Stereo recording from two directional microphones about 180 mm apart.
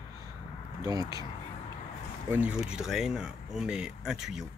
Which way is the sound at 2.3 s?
5° right (ahead or behind).